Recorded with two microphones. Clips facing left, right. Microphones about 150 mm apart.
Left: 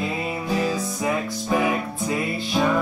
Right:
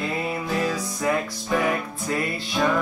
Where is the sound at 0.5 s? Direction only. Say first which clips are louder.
Left 1 dB; 10° left (ahead or behind).